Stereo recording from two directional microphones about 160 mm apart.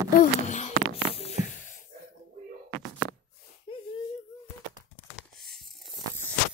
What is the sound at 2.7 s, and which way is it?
Knock, 90° right.